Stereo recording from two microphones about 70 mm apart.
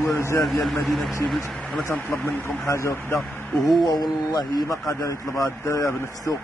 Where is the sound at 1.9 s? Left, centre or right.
Left.